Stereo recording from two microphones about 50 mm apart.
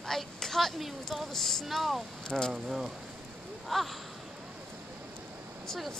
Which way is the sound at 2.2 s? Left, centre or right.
Centre.